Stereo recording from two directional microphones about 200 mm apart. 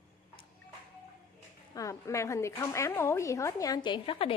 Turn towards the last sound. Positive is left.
turn(degrees=25)  # may be behind; listen again after turning